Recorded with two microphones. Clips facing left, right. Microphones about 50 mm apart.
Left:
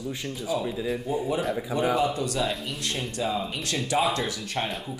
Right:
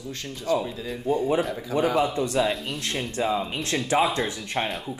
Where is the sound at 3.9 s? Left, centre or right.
Right.